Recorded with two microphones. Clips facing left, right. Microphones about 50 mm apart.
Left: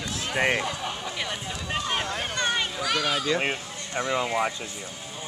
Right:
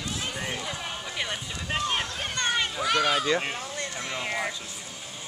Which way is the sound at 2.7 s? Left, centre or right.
Centre.